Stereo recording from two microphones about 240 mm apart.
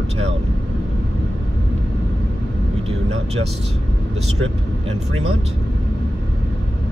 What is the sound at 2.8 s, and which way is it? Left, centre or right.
Speech, right.